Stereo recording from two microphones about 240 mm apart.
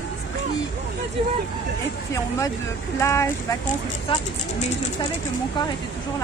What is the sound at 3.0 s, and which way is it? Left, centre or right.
Speech, centre.